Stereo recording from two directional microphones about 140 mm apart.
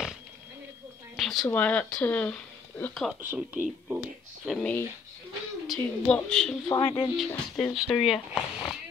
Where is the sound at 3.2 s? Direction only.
15° right (ahead or behind).